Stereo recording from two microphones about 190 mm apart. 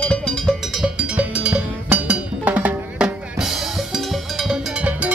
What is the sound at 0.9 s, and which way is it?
Music, 5° right (ahead or behind).